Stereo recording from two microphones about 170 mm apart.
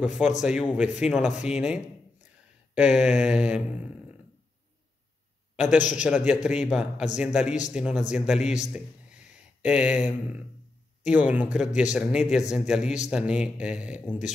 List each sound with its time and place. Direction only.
0.0 s mantra: 5° right (ahead or behind)
5.6 s a man's voice: 5° right (ahead or behind)
5.9 s mantra: 5° right (ahead or behind)
7.2 s speech: 5° right (ahead or behind)
7.7 s mantra: 5° right (ahead or behind)
8.1 s a man's voice: 5° right (ahead or behind)
11.5 s mantra: 5° right (ahead or behind)
13.1 s speech: 5° right (ahead or behind)